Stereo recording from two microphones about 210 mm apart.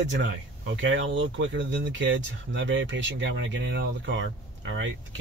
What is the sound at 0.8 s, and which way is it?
Speech, 60° right (ahead or behind).